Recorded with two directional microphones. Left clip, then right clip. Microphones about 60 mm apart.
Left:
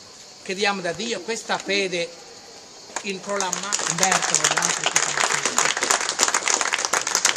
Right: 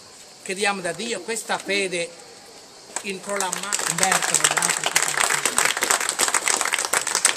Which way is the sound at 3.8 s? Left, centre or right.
Right.